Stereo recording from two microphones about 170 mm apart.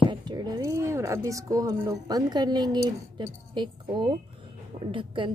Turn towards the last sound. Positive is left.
turn(degrees=-30)  # may be behind; listen again after turning